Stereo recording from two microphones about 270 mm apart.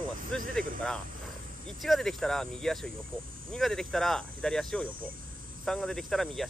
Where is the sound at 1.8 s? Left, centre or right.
Centre.